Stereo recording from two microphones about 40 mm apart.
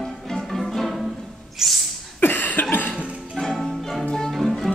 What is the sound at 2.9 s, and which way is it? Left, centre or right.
Music, right.